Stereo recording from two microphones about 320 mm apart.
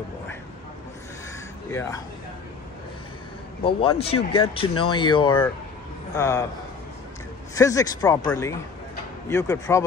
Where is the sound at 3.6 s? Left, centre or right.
Centre.